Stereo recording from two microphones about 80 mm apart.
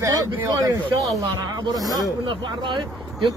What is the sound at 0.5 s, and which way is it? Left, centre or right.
Speech, right.